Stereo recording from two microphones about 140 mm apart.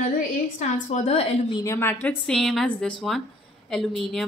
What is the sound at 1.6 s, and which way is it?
Speech, 15° left (ahead or behind).